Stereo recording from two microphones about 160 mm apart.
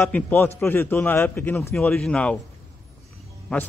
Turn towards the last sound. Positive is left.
turn(degrees=10)  # may be behind; listen again after turning